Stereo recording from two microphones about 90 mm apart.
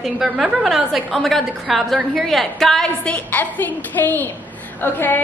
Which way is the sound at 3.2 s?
20° left (ahead or behind).